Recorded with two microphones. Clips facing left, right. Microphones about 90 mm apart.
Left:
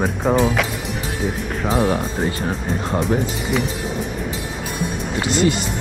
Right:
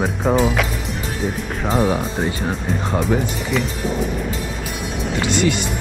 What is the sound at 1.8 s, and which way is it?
Speech, 10° right (ahead or behind).